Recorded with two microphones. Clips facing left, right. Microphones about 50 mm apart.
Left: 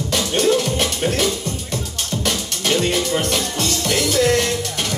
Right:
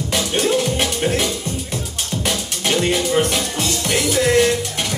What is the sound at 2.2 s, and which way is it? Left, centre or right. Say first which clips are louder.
Music: even; centre.